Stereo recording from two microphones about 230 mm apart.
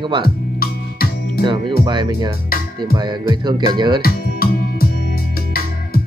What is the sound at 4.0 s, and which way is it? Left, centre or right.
Music, left.